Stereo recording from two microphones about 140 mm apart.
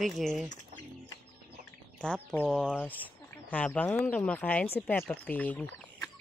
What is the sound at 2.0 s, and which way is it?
Speech, 5° left (ahead or behind).